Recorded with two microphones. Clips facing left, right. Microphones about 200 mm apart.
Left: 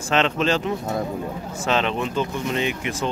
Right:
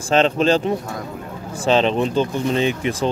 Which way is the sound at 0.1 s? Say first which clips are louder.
Right 5 dB; 35° right (ahead or behind).